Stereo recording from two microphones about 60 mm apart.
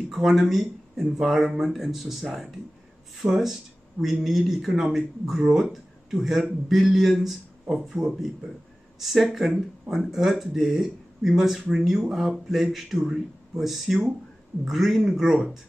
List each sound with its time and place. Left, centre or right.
0.1 s speech: centre
3.2 s speech: right
4.0 s speech: centre